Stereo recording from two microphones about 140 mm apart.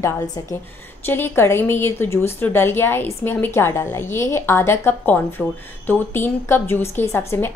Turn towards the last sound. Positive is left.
turn(degrees=15)  # may be behind; listen again after turning